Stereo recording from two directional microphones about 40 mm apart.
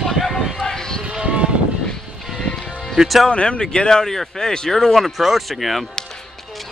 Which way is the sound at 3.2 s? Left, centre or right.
Left.